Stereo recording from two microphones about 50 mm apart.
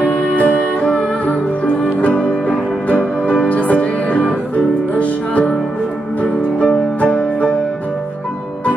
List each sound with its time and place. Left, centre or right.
0.4 s music: left